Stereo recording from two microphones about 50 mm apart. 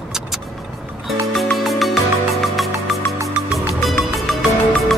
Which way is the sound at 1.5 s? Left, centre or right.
Centre.